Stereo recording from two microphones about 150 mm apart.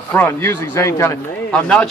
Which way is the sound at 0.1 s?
15° left (ahead or behind).